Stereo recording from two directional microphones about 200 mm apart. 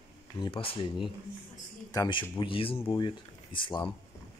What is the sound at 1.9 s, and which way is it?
Speech, 20° left (ahead or behind).